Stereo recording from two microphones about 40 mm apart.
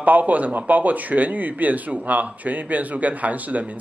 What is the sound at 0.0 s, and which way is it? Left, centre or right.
Speech, right.